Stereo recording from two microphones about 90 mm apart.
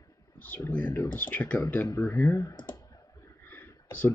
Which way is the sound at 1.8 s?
30° left (ahead or behind).